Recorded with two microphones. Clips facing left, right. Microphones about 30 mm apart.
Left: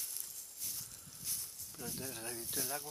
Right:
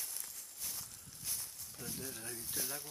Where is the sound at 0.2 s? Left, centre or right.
Right.